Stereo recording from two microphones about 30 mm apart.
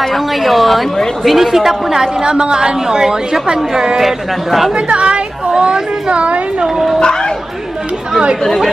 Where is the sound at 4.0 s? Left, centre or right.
Centre.